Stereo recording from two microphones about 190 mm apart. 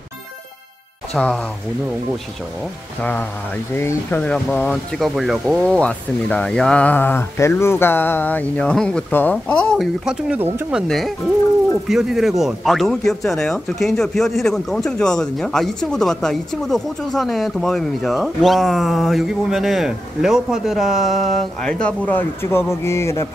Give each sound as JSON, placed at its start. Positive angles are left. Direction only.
{"t": 1.1, "sound": "speech", "side_deg": 5}
{"t": 3.0, "sound": "speech", "side_deg": 10}